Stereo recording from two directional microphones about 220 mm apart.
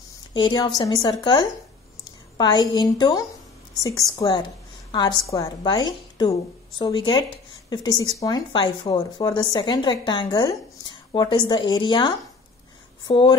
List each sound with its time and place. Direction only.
0.3 s a woman's voice: 20° left (ahead or behind)